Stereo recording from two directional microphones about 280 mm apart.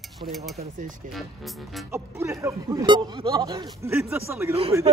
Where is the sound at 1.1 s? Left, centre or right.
Centre.